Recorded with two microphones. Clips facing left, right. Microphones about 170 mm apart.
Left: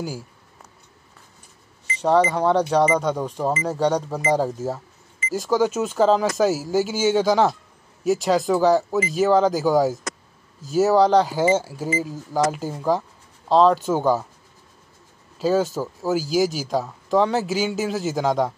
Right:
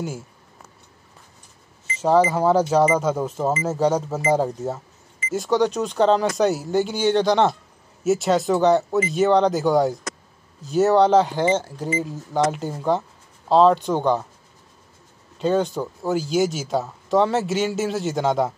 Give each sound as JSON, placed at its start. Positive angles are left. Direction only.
{"t": 1.9, "sound": "speech", "side_deg": -5}
{"t": 15.3, "sound": "speech", "side_deg": 5}